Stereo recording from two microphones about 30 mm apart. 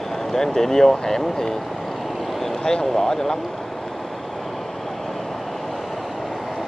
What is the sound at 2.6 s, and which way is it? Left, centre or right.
Speech, left.